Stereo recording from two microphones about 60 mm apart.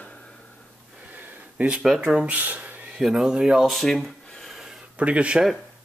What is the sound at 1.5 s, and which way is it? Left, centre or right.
Speech, right.